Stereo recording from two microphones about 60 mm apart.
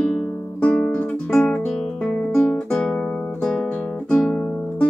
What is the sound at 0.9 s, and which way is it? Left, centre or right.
Guitar, left.